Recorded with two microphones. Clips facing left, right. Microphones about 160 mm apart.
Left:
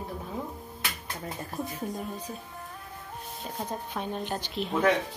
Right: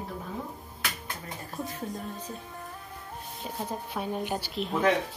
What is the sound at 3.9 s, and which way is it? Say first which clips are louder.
Speech: right 3 dB; 10° right (ahead or behind).